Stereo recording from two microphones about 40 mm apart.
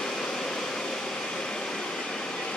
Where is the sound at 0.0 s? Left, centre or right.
Centre.